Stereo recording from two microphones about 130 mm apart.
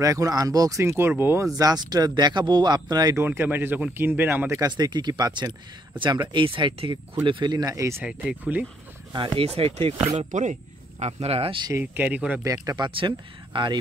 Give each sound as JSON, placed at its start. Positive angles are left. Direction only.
{"t": 0.0, "sound": "speech", "side_deg": -25}
{"t": 1.6, "sound": "speech", "side_deg": -30}
{"t": 3.2, "sound": "speech", "side_deg": -15}
{"t": 4.6, "sound": "speech", "side_deg": -30}
{"t": 8.0, "sound": "speech", "side_deg": -10}
{"t": 9.1, "sound": "speech", "side_deg": -35}
{"t": 9.4, "sound": "speech", "side_deg": -50}
{"t": 10.3, "sound": "speech", "side_deg": -70}
{"t": 11.7, "sound": "speech", "side_deg": -15}
{"t": 12.6, "sound": "speech", "side_deg": -35}